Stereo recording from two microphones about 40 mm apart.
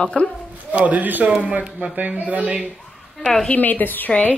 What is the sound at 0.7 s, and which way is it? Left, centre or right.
A man's voice, right.